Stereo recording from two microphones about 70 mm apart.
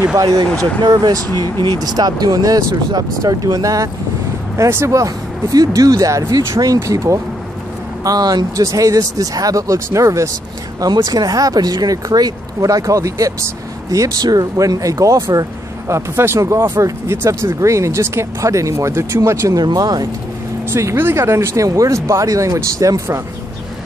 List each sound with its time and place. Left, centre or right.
0.8 s speech: right
4.6 s speech: right
9.8 s speech: right
10.8 s speech: right
15.9 s speech: right
19.5 s speech: right
20.7 s speech: right
21.6 s speech: right